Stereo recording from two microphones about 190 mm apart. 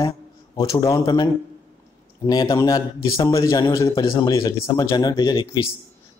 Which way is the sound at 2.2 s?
20° left (ahead or behind).